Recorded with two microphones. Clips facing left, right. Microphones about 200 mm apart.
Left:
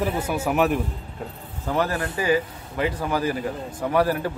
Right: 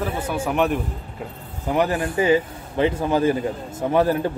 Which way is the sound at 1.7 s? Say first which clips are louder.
Right 3 dB; 20° right (ahead or behind).